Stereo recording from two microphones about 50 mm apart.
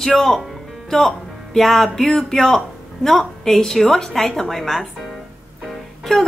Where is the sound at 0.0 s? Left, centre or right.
Centre.